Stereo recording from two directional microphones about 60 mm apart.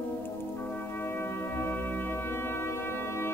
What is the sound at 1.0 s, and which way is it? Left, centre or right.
Music, left.